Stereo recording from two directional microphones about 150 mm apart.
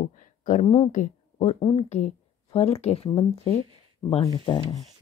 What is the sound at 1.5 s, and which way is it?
Speech, 35° left (ahead or behind).